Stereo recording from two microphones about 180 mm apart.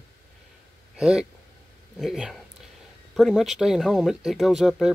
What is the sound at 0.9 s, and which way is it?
Speech, 5° right (ahead or behind).